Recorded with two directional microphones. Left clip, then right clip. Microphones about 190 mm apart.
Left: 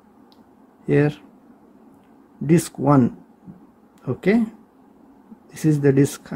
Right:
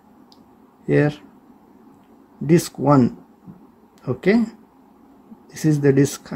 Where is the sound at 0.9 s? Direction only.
5° left (ahead or behind).